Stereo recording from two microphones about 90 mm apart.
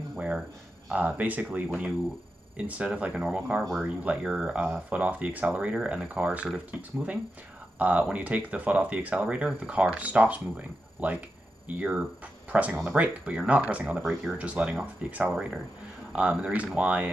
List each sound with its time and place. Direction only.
0.1 s a sound: 15° right (ahead or behind)
0.8 s speech: 15° right (ahead or behind)
13.9 s speech: 5° right (ahead or behind)
14.4 s speech: 15° right (ahead or behind)